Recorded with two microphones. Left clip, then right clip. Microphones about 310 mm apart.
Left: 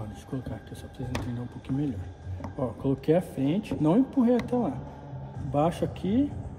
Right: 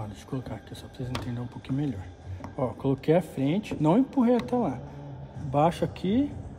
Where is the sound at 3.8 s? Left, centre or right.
Right.